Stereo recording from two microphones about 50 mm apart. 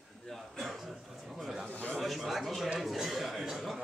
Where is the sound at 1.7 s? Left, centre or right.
Left.